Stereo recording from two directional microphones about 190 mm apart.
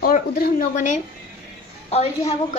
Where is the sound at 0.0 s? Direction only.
50° left (ahead or behind).